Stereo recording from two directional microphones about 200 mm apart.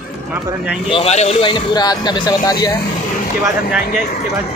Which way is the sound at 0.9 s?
30° left (ahead or behind).